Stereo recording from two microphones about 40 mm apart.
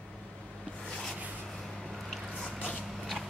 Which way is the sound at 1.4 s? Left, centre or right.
Centre.